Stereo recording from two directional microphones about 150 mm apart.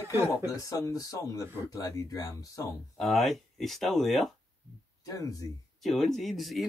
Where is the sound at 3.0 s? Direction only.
Centre (ahead or behind).